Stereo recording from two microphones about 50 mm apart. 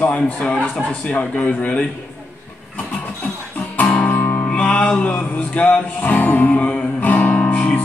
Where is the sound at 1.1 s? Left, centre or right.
Left.